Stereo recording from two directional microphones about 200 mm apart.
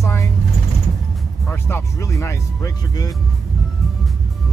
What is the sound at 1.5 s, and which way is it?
Speech, 10° left (ahead or behind).